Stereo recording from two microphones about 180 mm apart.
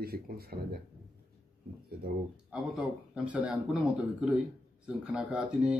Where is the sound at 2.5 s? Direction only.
5° right (ahead or behind).